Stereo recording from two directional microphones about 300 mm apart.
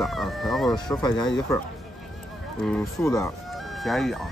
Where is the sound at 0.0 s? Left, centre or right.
Centre.